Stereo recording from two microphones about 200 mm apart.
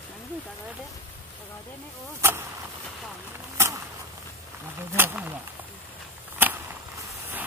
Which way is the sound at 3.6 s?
15° right (ahead or behind).